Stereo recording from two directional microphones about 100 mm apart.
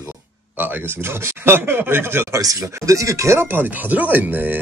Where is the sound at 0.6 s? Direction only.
20° right (ahead or behind).